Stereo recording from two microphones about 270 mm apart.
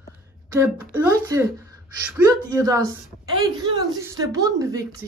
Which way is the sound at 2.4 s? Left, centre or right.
Centre.